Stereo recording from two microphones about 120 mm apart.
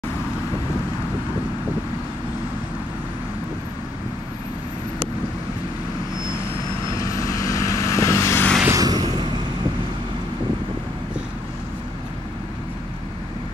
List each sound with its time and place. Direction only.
6.9 s vehicle: 30° left (ahead or behind)
8.6 s vehicle: 30° right (ahead or behind)